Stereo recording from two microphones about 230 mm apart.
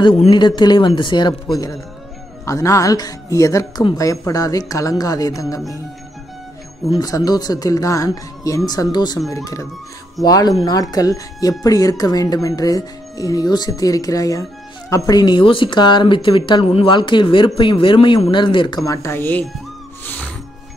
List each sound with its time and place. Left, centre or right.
0.0 s speech: centre
6.9 s speech: centre
20.1 s music: centre